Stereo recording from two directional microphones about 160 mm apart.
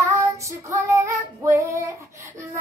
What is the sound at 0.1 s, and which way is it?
Child singing, 20° right (ahead or behind).